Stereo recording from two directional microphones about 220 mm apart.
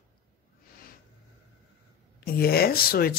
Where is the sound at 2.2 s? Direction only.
45° left (ahead or behind).